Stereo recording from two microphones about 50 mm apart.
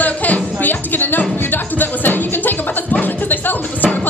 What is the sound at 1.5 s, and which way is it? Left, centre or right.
Music, left.